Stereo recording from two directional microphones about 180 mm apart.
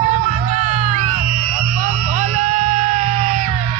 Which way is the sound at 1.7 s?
50° right (ahead or behind).